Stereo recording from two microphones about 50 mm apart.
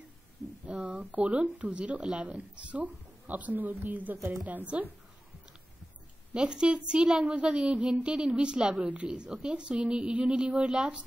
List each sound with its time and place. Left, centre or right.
0.7 s a woman's voice: right
6.3 s speech: centre